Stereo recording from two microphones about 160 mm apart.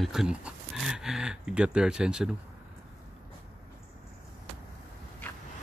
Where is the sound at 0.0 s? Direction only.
Centre (ahead or behind).